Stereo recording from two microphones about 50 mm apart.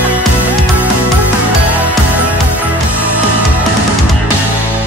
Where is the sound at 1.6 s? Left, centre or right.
Right.